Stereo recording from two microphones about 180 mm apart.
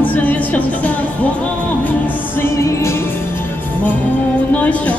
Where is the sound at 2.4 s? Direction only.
15° left (ahead or behind).